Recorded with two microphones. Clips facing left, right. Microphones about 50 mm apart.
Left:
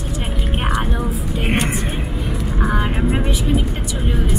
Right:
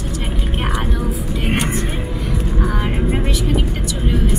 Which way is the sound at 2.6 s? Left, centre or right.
Left.